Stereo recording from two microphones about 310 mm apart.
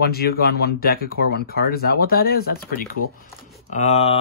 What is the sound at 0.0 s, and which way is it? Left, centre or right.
Speech, left.